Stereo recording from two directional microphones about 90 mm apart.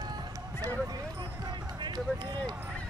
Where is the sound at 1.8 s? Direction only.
55° right (ahead or behind).